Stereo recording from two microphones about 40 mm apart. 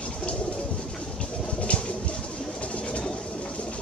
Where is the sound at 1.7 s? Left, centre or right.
Left.